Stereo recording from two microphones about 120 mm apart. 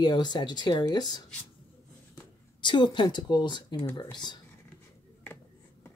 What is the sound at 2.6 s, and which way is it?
Speech, 40° left (ahead or behind).